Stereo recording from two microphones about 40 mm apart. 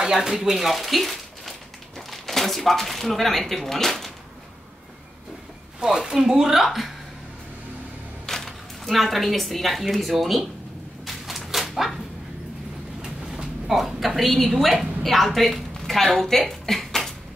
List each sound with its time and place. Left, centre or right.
0.0 s speech: centre
5.8 s speech: centre
8.3 s a woman's voice: centre
11.1 s dog: centre
13.0 s train: centre
13.7 s a woman's voice: centre